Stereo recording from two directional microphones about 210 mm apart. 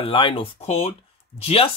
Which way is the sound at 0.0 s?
25° left (ahead or behind).